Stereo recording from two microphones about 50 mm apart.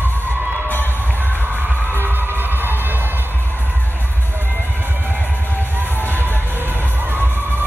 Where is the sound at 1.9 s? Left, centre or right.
Right.